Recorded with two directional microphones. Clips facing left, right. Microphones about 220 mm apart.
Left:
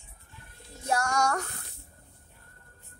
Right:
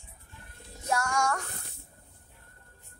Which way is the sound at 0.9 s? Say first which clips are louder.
Left 1 dB; 35° left (ahead or behind).